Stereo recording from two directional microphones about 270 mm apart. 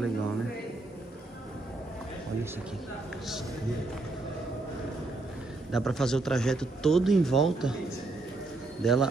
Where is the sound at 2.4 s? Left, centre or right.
Centre.